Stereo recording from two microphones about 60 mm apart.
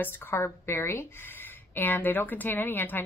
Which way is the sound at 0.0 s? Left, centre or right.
Left.